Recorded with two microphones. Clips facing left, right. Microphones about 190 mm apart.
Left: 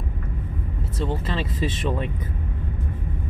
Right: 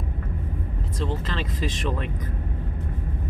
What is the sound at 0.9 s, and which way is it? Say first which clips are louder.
Speech: left 2 dB; 5° left (ahead or behind).